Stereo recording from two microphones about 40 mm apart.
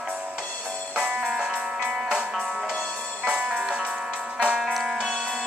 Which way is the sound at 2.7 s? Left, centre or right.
Centre.